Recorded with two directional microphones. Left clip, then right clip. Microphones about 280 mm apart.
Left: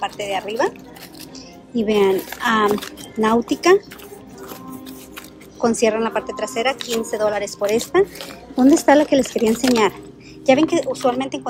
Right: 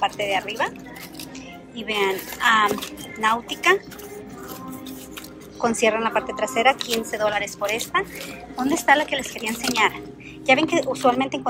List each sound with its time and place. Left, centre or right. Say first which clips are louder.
0.0 s a woman's voice: right 1 dB; centre
1.8 s a woman's voice: left 6 dB; centre
5.6 s a woman's voice: left 2 dB; centre